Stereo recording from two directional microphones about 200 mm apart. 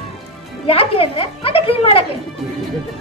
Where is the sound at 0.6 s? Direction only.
30° left (ahead or behind).